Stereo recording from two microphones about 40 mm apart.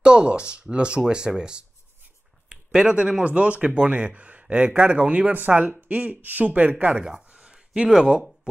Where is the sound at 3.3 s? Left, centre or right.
Right.